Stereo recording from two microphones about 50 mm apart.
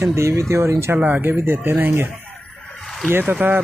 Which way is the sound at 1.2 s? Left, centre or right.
Right.